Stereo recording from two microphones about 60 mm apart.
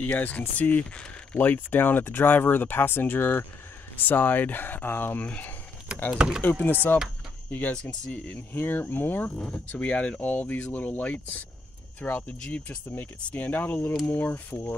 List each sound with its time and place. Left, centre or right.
0.0 s speech: left
6.1 s speech: centre
6.4 s speech: left
7.7 s speech: centre
8.5 s speech: left